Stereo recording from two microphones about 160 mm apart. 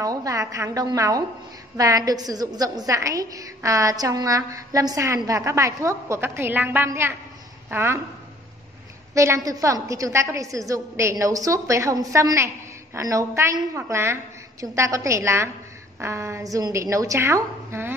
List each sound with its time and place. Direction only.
0.0 s a woman's voice: 20° right (ahead or behind)
9.1 s a woman's voice: 20° right (ahead or behind)